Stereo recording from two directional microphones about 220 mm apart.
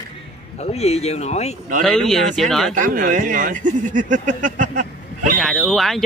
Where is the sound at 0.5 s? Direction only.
30° left (ahead or behind).